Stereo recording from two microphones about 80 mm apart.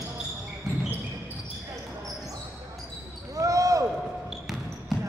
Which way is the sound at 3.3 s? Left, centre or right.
Right.